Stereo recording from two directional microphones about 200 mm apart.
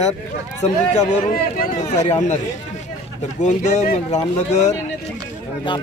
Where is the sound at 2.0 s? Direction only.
35° left (ahead or behind).